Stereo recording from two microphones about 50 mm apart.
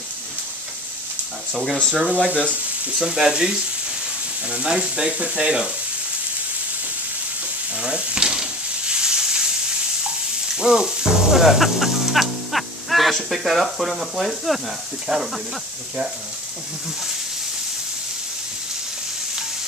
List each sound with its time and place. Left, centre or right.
1.5 s speech: centre
2.1 s speech: left
3.0 s speech: centre
7.8 s frying: centre
10.5 s music: centre